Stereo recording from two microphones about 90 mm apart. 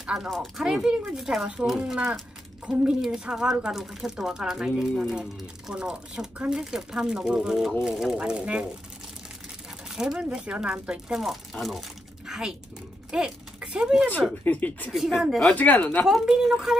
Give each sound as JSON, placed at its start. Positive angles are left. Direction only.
{"t": 0.0, "sound": "speech", "side_deg": -5}
{"t": 9.9, "sound": "speech", "side_deg": -10}
{"t": 14.4, "sound": "speech", "side_deg": 20}
{"t": 15.0, "sound": "speech", "side_deg": 0}
{"t": 15.5, "sound": "speech", "side_deg": 15}
{"t": 16.1, "sound": "speech", "side_deg": -5}